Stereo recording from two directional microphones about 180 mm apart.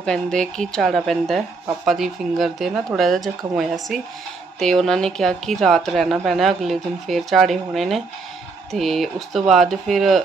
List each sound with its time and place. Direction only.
0.0 s speech: 5° left (ahead or behind)